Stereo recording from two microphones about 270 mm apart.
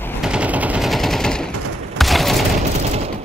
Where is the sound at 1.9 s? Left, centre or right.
Centre.